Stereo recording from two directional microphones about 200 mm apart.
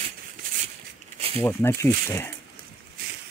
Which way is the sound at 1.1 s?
30° right (ahead or behind).